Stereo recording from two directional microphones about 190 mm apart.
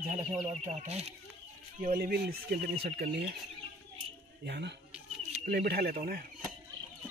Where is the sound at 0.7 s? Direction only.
35° right (ahead or behind).